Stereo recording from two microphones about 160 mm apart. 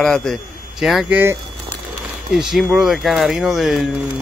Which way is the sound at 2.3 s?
Centre (ahead or behind).